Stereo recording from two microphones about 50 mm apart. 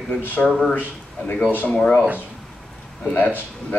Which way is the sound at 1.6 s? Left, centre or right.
Centre.